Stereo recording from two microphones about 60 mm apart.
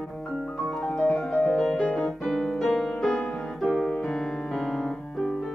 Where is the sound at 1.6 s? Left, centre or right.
Centre.